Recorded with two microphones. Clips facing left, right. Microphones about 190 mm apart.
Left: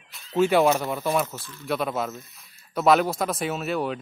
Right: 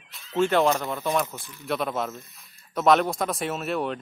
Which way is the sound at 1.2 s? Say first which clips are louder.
Left 2 dB; 15° right (ahead or behind).